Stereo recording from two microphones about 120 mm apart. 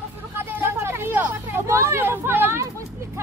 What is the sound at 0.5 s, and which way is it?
Vehicle, 20° right (ahead or behind).